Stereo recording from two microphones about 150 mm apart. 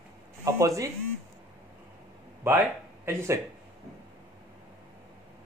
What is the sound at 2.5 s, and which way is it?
Speech, 15° right (ahead or behind).